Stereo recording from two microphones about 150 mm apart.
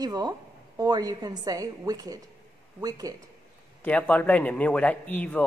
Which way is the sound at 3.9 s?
10° left (ahead or behind).